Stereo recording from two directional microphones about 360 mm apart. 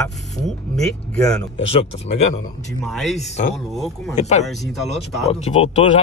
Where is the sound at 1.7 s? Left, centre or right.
Centre.